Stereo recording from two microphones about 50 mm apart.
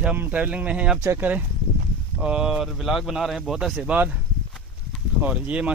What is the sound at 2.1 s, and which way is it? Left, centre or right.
Speech, centre.